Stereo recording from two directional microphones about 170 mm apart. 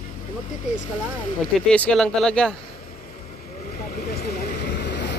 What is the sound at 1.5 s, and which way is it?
Speech, 5° left (ahead or behind).